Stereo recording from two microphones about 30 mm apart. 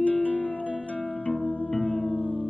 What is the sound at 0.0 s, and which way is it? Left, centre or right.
Music, left.